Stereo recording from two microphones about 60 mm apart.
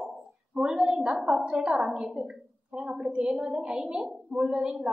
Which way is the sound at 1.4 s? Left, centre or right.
Centre.